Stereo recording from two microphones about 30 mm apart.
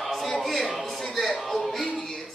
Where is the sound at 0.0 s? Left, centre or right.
Centre.